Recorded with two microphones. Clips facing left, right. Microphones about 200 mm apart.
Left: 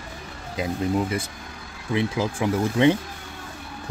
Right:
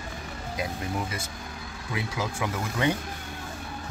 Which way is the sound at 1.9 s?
30° left (ahead or behind).